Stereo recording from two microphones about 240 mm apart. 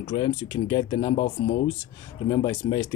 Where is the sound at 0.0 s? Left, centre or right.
Centre.